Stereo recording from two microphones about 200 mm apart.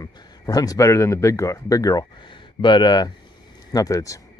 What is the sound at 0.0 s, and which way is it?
A man's voice, 20° left (ahead or behind).